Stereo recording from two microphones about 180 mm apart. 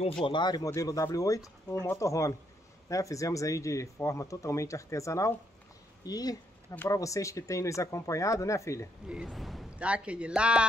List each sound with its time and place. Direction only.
0.2 s speech: 25° left (ahead or behind)
9.1 s a man's voice: centre (ahead or behind)